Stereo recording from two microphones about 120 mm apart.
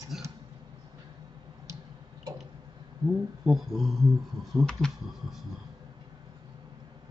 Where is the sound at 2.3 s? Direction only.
35° right (ahead or behind).